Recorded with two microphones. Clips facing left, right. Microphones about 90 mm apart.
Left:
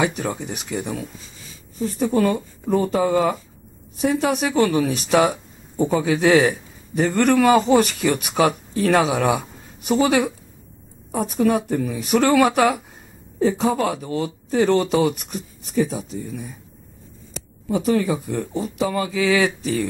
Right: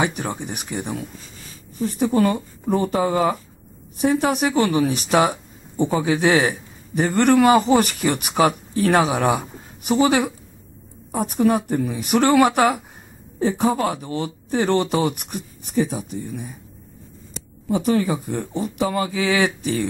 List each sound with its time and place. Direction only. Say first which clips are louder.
0.0 s speech: left 1 dB; 20° right (ahead or behind)
1.8 s speech: right 1 dB; 5° right (ahead or behind)
5.3 s a sound: left 1 dB; centre (ahead or behind)
6.0 s speech: left 3 dB; 10° right (ahead or behind)
9.4 s a sound: right 2 dB; 15° right (ahead or behind)
11.2 s speech: right 1 dB; 10° right (ahead or behind)
13.8 s speech: even; centre (ahead or behind)
14.2 s speech: left 3 dB; 15° right (ahead or behind)
17.6 s speech: even; 10° right (ahead or behind)